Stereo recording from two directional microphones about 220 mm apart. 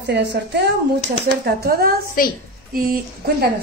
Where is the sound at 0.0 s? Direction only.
50° right (ahead or behind).